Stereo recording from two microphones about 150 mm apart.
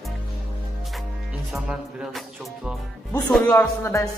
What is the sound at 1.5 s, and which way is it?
Speech, 5° right (ahead or behind).